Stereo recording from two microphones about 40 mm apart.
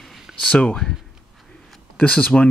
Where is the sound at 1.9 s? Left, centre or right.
Left.